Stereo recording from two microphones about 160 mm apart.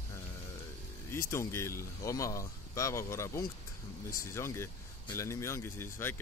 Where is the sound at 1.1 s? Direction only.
15° left (ahead or behind).